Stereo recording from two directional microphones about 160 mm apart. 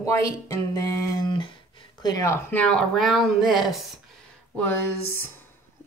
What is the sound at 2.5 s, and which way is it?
Speech, 5° left (ahead or behind).